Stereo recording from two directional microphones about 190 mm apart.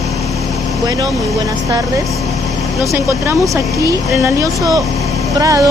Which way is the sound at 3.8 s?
15° right (ahead or behind).